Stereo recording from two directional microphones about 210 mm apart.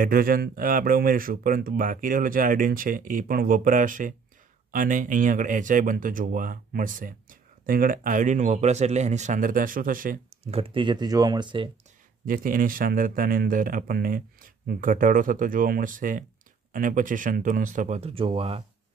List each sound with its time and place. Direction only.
0.0 s speech: 45° right (ahead or behind); by 11.7 s 25° right (ahead or behind)
12.3 s speech: 40° right (ahead or behind); by 18.6 s 25° right (ahead or behind)